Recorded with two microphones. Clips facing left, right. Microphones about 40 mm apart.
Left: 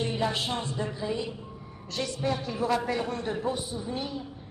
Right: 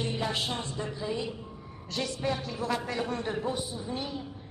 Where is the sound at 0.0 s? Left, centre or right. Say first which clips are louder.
Left 2 dB; centre.